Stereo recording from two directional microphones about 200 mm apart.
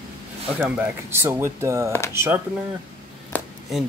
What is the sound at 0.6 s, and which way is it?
Speech, 5° right (ahead or behind).